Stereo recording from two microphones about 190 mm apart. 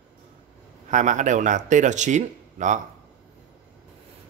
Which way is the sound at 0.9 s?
40° right (ahead or behind).